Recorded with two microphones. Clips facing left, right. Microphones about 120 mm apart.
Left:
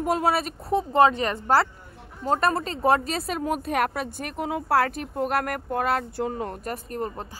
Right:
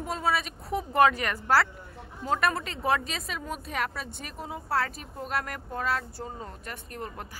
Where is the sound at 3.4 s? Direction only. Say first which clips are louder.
Left 8 dB; 55° left (ahead or behind).